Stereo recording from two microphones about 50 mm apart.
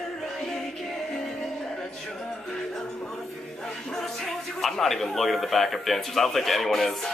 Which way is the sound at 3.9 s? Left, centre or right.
Centre.